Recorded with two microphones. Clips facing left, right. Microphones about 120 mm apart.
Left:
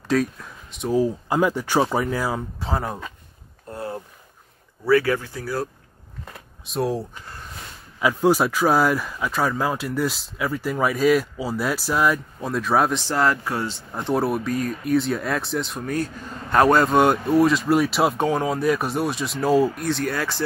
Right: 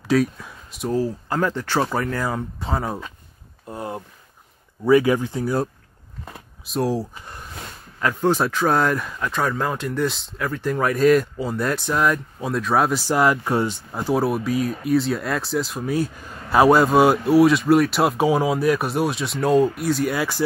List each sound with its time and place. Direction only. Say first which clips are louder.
0.1 s speech: right 2 dB; centre (ahead or behind)
0.9 s speech: left 3 dB; 15° left (ahead or behind)
3.6 s a sound: right 1 dB; 15° right (ahead or behind)
4.8 s speech: right 3 dB; 15° right (ahead or behind)
6.6 s speech: right 2 dB; centre (ahead or behind); by 13.7 s 25° right (ahead or behind)
13.9 s speech: right 1 dB; 5° right (ahead or behind)